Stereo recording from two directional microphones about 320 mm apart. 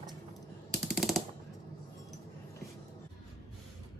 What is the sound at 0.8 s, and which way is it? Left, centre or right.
Machine gun, centre.